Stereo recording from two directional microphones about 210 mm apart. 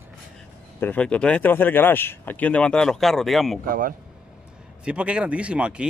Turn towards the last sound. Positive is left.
turn(degrees=-5)  # may be behind; listen again after turning